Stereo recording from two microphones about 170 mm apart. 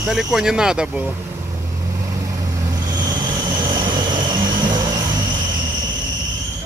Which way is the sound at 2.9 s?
25° right (ahead or behind).